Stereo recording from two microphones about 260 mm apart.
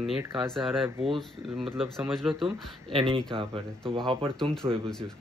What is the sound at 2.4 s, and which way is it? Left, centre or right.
Speech, centre.